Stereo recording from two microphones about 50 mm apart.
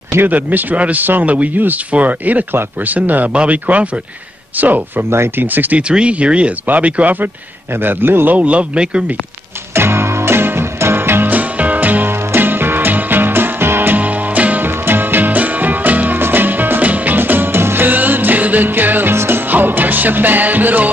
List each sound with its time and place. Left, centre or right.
0.3 s speech: right
5.1 s speech: right
5.4 s speech: right
5.8 s speech: right
7.7 s a man's voice: right
8.4 s speech: right
9.8 s music: right
11.3 s music: right
12.1 s music: right
14.7 s music: right
17.2 s music: right
19.1 s music: right